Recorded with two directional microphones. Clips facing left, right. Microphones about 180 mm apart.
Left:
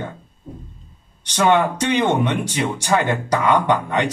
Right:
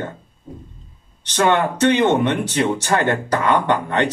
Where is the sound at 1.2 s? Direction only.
10° left (ahead or behind).